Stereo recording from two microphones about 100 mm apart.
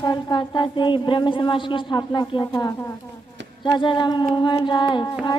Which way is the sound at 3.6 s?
50° left (ahead or behind).